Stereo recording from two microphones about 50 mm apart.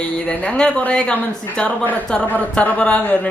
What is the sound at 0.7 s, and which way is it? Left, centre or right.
Speech, left.